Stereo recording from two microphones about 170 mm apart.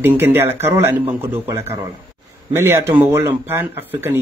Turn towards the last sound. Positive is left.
turn(degrees=-10)  # may be behind; listen again after turning